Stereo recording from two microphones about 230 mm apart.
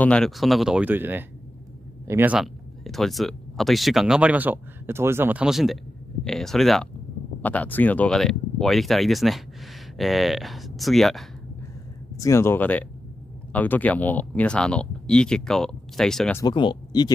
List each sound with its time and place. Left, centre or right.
0.0 s speech: centre
12.2 s speech: centre
16.4 s speech: centre